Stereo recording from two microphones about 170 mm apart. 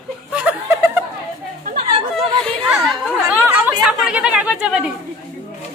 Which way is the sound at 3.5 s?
5° right (ahead or behind).